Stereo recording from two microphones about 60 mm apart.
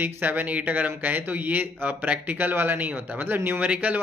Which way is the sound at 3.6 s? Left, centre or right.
Right.